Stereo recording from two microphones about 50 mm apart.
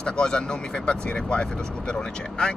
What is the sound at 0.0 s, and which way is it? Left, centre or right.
Speech, centre.